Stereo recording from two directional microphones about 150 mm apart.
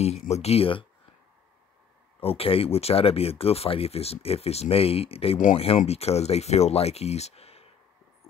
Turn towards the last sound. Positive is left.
turn(degrees=45)  # may be behind; listen again after turning